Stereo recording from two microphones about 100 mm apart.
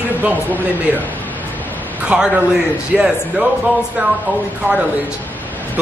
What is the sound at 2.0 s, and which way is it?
Speech, 5° right (ahead or behind).